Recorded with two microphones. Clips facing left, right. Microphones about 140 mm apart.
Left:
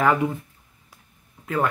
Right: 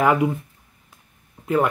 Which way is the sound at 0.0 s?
15° right (ahead or behind).